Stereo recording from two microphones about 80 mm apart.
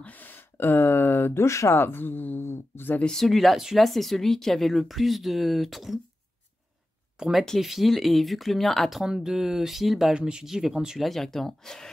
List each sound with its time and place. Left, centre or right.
0.0 s speech: left
3.1 s speech: centre
7.2 s speech: centre